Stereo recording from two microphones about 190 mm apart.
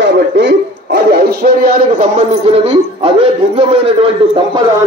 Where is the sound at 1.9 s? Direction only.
35° right (ahead or behind).